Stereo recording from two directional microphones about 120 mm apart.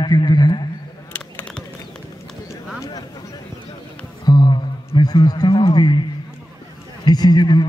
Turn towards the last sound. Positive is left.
turn(degrees=35)  # may be behind; listen again after turning